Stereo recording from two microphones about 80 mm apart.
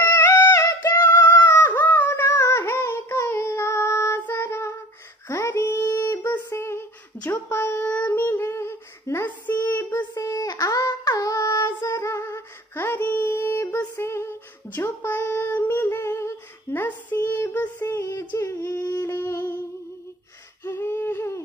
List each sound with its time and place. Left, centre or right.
0.1 s music: left
2.6 s child singing: left
5.9 s a sound: left
7.9 s female singing: left
10.1 s child singing: left
13.9 s female singing: left
17.8 s female singing: left
18.4 s humming: left
20.6 s a sound: left